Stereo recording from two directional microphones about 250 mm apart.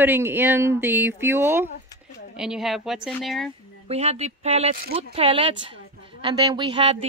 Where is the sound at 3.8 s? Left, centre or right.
Right.